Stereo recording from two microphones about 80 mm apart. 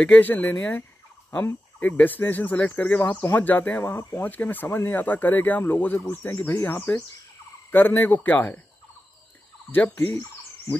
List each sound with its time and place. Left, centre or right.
0.0 s speech: left
3.8 s speech: left
4.2 s speech: left
9.7 s speech: left